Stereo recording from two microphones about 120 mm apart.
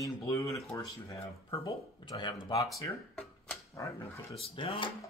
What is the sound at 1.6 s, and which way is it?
Speech, 40° left (ahead or behind).